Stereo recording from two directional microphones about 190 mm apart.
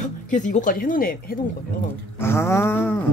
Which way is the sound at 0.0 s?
40° left (ahead or behind).